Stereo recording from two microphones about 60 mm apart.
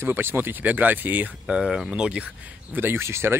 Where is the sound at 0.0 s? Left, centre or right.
Right.